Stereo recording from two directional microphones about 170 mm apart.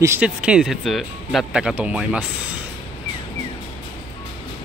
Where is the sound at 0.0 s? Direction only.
10° right (ahead or behind).